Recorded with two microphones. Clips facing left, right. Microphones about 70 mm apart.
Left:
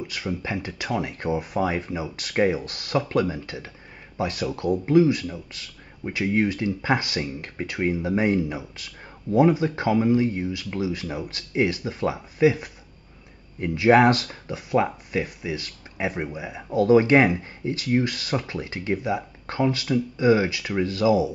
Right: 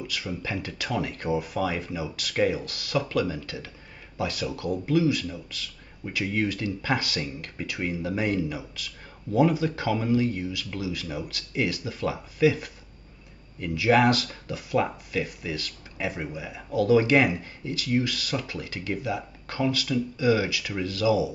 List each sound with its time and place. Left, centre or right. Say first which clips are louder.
0.0 s speech: left 3 dB; left